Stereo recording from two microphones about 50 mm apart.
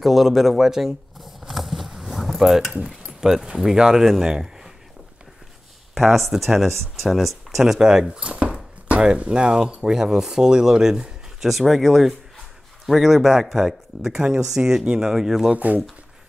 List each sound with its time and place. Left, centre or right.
0.0 s a sound: centre
3.5 s speech: centre
5.9 s speech: centre
15.5 s speech: right